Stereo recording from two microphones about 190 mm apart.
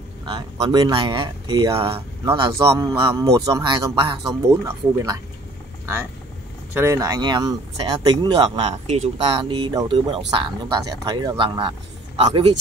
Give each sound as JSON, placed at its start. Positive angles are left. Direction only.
{"t": 0.2, "sound": "speech", "side_deg": -20}
{"t": 2.3, "sound": "speech", "side_deg": -25}
{"t": 2.7, "sound": "speech", "side_deg": -15}
{"t": 6.7, "sound": "speech", "side_deg": -15}